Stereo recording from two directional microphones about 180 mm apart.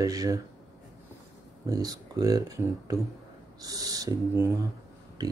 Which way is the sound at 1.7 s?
20° right (ahead or behind).